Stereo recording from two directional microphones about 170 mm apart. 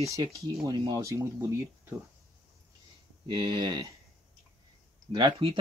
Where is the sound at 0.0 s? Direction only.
20° right (ahead or behind).